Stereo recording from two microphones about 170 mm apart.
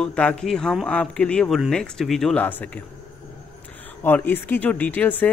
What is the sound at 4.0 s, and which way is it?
Speech, 10° left (ahead or behind).